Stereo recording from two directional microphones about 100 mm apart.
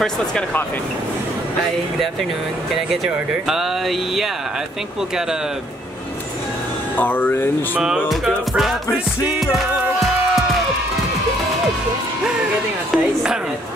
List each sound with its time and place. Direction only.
7.0 s speech: 20° left (ahead or behind)
8.1 s music: centre (ahead or behind)
12.9 s speech: 5° right (ahead or behind)